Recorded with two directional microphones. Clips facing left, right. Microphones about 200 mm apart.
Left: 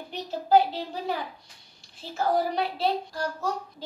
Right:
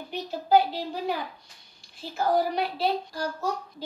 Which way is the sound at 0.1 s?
Centre (ahead or behind).